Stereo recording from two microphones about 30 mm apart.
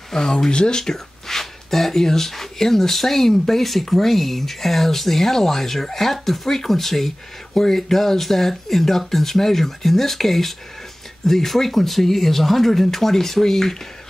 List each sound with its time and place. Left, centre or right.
0.1 s speech: centre
0.5 s speech: left
0.9 s speech: centre